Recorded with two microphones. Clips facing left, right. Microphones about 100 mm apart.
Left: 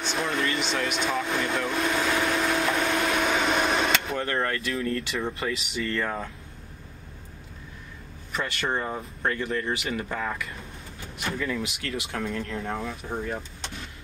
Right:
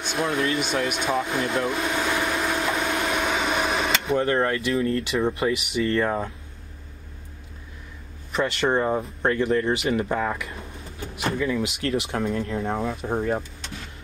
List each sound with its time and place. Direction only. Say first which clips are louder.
0.0 s a sound: right 3 dB; 15° right (ahead or behind)
0.5 s speech: right 3 dB; 15° right (ahead or behind)
1.2 s vehicle: right 3 dB; 5° right (ahead or behind)
4.7 s speech: right 5 dB; 30° right (ahead or behind)
5.4 s speech: right 6 dB; 15° right (ahead or behind)
8.3 s speech: right 6 dB; 20° right (ahead or behind)
11.9 s speech: right 5 dB; 30° right (ahead or behind)